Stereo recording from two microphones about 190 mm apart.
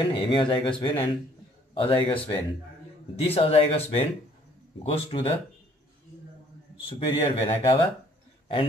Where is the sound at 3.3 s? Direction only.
30° left (ahead or behind).